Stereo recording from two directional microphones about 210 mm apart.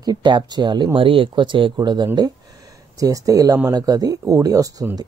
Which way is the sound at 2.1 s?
15° right (ahead or behind).